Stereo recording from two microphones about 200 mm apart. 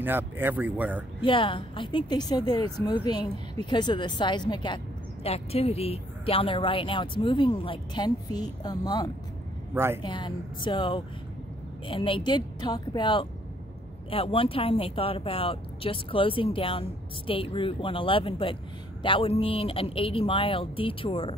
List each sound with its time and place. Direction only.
0.0 s speech: 10° right (ahead or behind)
1.2 s speech: 25° left (ahead or behind)